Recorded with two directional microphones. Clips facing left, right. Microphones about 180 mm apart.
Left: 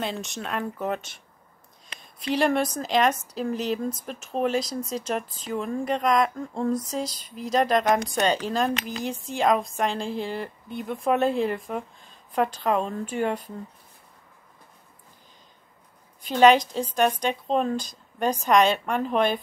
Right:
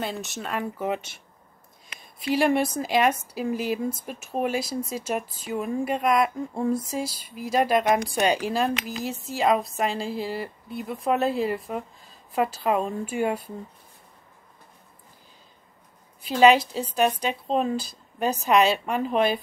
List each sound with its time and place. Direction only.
0.0 s a woman's voice: centre (ahead or behind)
16.2 s speech: 5° right (ahead or behind)